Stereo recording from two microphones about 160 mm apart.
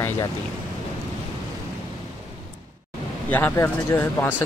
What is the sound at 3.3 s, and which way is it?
Speech, 10° left (ahead or behind).